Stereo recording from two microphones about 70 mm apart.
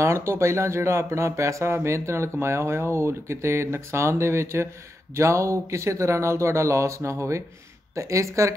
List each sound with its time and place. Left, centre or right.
0.0 s speech: right